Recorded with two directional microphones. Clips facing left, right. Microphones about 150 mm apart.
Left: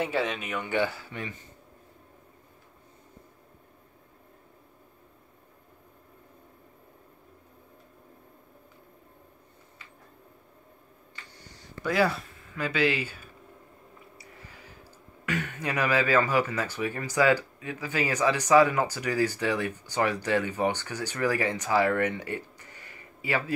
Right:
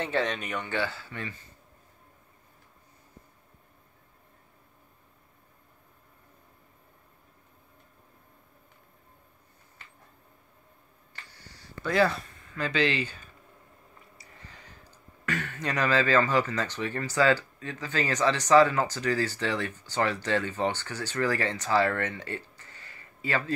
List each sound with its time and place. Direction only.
0.0 s speech: 10° left (ahead or behind)
0.7 s speech: 15° left (ahead or behind)
11.2 s a sound: 20° left (ahead or behind)
11.9 s speech: 5° left (ahead or behind)
14.1 s a sound: 10° left (ahead or behind)
15.2 s speech: 10° left (ahead or behind)